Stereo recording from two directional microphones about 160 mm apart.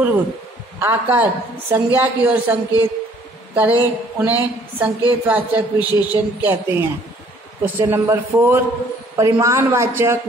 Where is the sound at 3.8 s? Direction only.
10° right (ahead or behind).